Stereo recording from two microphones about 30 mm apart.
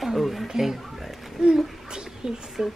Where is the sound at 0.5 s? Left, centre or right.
Centre.